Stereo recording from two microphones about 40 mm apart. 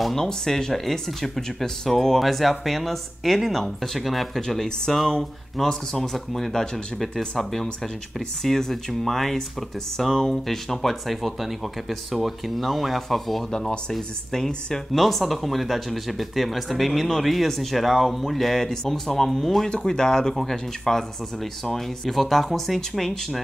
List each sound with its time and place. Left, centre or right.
0.0 s speech: centre
13.5 s speech: centre
19.9 s speech: centre